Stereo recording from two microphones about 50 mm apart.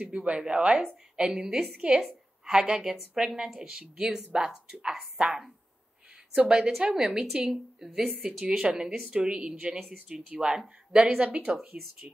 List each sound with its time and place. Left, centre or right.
0.0 s a woman's voice: right; by 3.5 s centre
3.5 s a woman's voice: centre